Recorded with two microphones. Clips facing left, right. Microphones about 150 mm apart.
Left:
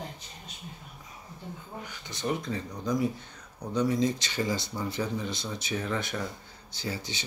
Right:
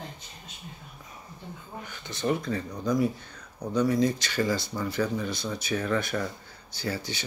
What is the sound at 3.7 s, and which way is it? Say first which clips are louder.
Speech: right 2 dB; 25° left (ahead or behind).